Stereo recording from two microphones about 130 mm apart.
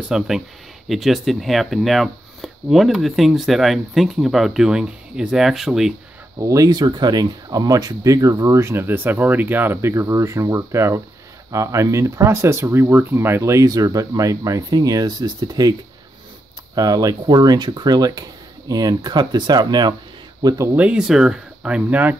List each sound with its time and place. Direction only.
0.1 s speech: 5° right (ahead or behind)
6.4 s speech: 25° right (ahead or behind)
16.7 s speech: 30° right (ahead or behind)
20.7 s speech: 10° right (ahead or behind)